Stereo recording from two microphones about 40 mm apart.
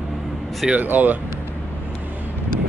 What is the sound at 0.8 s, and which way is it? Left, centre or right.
Speech, right.